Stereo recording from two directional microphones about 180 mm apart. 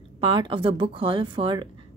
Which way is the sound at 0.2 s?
30° right (ahead or behind).